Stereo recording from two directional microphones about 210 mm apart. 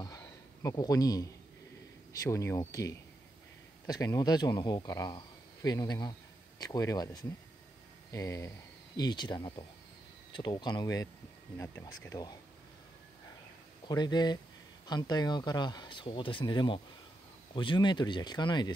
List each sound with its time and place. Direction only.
0.0 s a sound: 15° left (ahead or behind)
2.2 s speech: 15° left (ahead or behind)
13.8 s speech: 20° left (ahead or behind)